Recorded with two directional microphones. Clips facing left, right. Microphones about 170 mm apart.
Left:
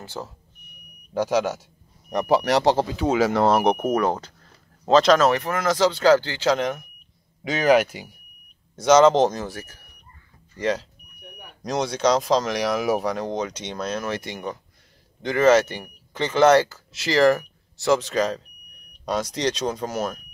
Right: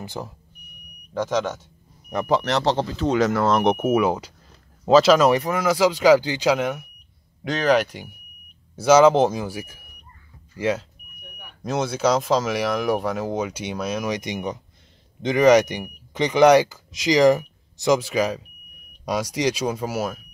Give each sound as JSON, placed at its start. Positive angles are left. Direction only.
{"t": 0.0, "sound": "speech", "side_deg": -15}
{"t": 1.1, "sound": "speech", "side_deg": 10}
{"t": 3.6, "sound": "speech", "side_deg": -5}
{"t": 7.4, "sound": "speech", "side_deg": 10}
{"t": 8.7, "sound": "speech", "side_deg": -5}